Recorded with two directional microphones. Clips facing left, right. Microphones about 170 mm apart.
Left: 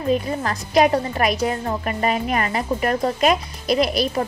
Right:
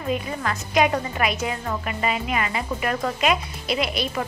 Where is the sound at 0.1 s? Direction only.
35° left (ahead or behind).